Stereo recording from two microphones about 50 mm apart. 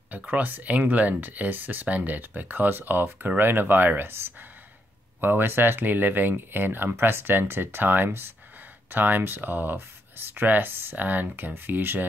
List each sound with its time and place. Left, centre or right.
0.3 s speech: right